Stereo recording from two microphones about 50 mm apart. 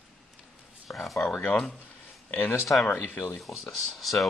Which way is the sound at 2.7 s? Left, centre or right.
Left.